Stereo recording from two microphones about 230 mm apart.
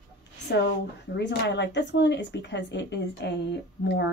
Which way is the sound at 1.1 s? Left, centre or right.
Left.